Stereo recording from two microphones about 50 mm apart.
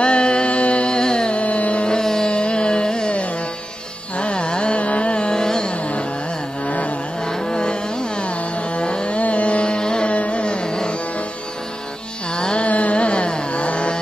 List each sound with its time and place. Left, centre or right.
0.0 s music: centre
4.2 s carnatic music: left
6.6 s carnatic music: left
7.2 s carnatic music: centre
12.4 s carnatic music: centre
12.6 s carnatic music: left